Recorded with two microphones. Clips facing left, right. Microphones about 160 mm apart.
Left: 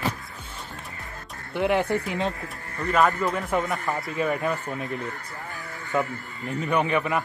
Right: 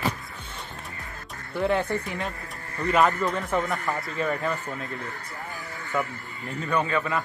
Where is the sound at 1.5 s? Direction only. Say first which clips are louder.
Left 2 dB; 10° left (ahead or behind).